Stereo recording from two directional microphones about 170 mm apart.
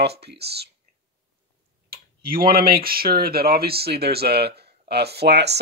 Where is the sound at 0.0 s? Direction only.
75° right (ahead or behind).